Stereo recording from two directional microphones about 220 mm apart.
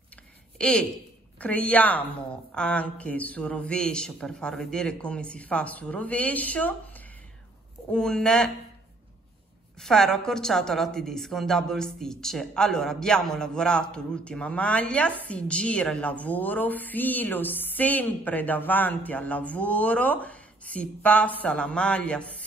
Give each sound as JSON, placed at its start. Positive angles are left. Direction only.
{"t": 0.1, "sound": "a sound", "side_deg": 5}
{"t": 1.4, "sound": "a woman's voice", "side_deg": 5}
{"t": 9.8, "sound": "a woman's voice", "side_deg": 0}